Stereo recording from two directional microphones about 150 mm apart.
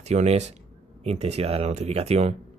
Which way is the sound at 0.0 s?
45° right (ahead or behind).